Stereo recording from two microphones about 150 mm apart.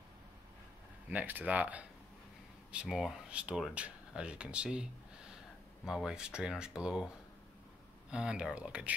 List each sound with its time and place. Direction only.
1.1 s speech: 10° right (ahead or behind)
5.9 s speech: 5° right (ahead or behind)
8.1 s speech: 5° right (ahead or behind)